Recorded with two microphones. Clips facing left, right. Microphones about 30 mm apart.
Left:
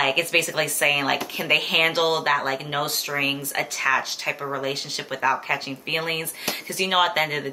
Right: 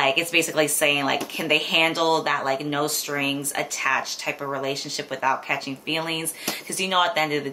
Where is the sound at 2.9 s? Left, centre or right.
Left.